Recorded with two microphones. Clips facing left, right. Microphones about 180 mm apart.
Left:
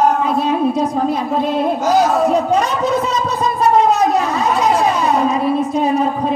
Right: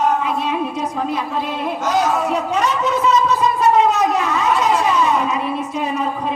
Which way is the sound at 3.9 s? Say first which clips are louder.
Left 3 dB; 35° left (ahead or behind).